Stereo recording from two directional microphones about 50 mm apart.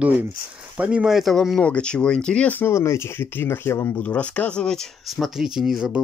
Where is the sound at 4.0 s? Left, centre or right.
Left.